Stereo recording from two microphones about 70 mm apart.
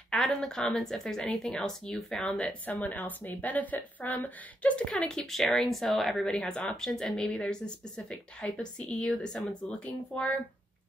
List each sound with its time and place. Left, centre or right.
0.1 s a woman's voice: centre
2.3 s a woman's voice: left
4.9 s a woman's voice: centre